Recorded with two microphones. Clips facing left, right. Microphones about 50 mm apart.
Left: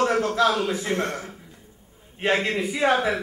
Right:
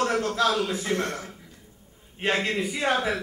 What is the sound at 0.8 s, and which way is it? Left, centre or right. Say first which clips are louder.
Speech: left 2 dB; centre.